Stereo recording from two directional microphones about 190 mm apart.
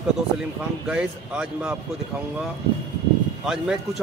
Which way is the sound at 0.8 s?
5° right (ahead or behind).